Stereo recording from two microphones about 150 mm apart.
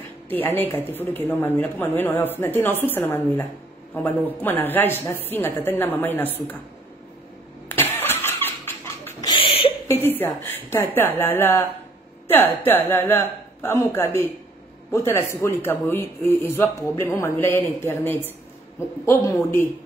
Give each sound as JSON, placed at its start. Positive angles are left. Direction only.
{"t": 0.3, "sound": "a woman's voice", "side_deg": 15}
{"t": 7.6, "sound": "engine starting", "side_deg": 15}
{"t": 9.0, "sound": "rodents", "side_deg": 25}
{"t": 9.8, "sound": "a woman's voice", "side_deg": 15}